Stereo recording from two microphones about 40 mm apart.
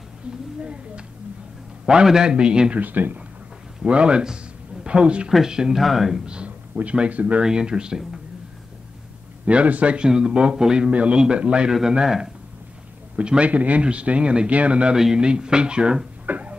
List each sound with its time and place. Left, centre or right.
0.6 s speech: right
1.9 s speech: centre
2.8 s speech: right
3.8 s speech: right
5.8 s speech: centre
6.1 s speech: right
6.7 s a man's voice: right
7.4 s speech: centre
9.5 s a man's voice: right
9.9 s speech: right
10.9 s a man's voice: right; by 12.3 s centre
13.4 s a man's voice: right
16.3 s a sound: right